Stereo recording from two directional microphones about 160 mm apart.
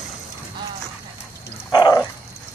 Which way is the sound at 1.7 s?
25° left (ahead or behind).